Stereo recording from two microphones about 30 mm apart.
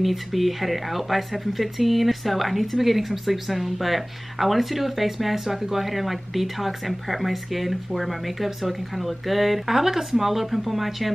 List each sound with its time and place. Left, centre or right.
0.0 s speech: centre